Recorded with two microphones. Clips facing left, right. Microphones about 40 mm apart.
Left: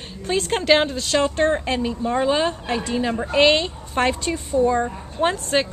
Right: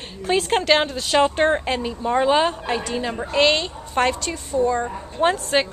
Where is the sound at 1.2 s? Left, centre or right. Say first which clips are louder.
Right 2 dB; right.